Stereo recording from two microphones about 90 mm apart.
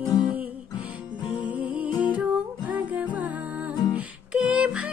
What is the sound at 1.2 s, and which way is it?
Music, 65° left (ahead or behind).